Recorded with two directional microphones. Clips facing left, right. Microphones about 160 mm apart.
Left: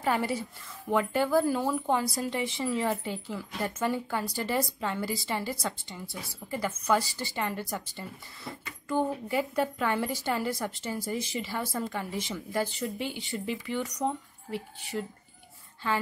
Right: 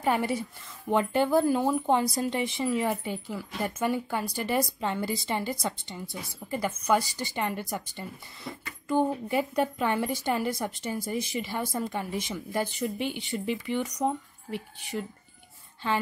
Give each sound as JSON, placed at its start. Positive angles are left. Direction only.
{"t": 0.0, "sound": "speech", "side_deg": -20}